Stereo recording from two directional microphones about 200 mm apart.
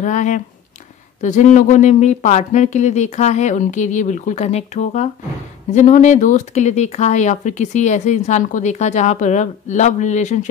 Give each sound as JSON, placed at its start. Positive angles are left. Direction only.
{"t": 0.0, "sound": "speech", "side_deg": 40}